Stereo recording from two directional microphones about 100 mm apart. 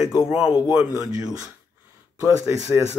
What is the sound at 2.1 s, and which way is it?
Speech, 30° right (ahead or behind).